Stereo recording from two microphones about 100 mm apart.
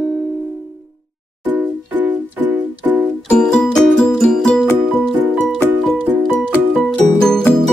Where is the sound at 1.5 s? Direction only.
15° right (ahead or behind).